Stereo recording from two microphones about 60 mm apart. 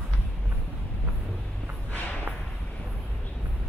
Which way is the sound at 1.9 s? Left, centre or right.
Left.